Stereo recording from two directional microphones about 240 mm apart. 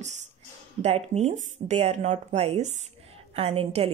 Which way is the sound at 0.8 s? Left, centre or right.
Right.